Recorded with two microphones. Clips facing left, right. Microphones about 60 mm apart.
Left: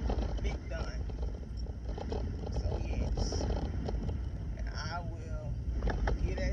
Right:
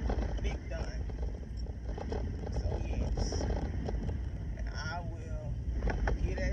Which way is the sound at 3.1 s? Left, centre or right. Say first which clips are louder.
Even; right.